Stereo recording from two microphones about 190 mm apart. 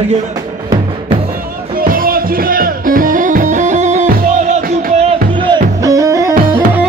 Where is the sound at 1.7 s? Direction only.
50° right (ahead or behind).